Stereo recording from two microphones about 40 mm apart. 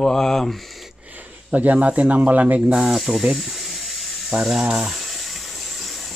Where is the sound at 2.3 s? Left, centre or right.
Right.